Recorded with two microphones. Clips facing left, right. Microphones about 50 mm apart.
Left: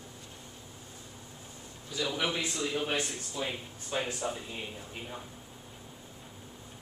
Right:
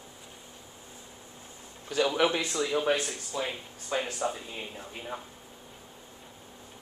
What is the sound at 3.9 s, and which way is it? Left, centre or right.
Speech, right.